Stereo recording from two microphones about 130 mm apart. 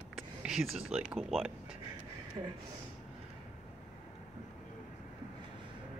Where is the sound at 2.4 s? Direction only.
40° right (ahead or behind).